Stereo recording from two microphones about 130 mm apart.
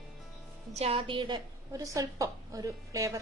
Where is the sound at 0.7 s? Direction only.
50° right (ahead or behind).